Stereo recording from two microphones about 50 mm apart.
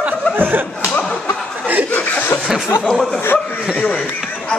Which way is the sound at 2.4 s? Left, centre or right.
Centre.